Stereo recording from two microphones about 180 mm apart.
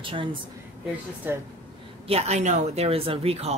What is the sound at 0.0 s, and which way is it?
Speech, 30° right (ahead or behind).